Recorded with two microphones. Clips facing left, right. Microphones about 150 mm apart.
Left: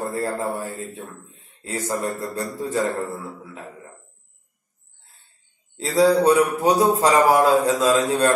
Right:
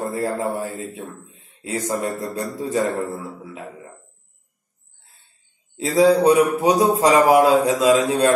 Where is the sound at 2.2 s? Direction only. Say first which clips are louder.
Right 1 dB; 20° right (ahead or behind).